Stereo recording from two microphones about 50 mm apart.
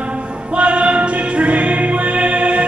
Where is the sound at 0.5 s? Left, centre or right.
Right.